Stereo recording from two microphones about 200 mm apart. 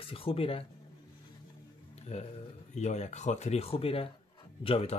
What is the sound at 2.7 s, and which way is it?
Speech, 35° left (ahead or behind).